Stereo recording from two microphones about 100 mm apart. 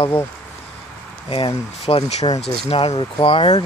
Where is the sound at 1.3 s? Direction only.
65° left (ahead or behind); by 2.2 s 90° left.